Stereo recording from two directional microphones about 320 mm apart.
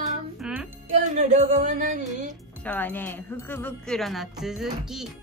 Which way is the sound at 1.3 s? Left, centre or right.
Right.